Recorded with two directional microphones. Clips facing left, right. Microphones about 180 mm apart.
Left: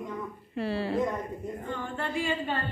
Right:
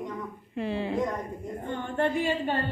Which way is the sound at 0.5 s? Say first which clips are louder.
Even; 15° right (ahead or behind).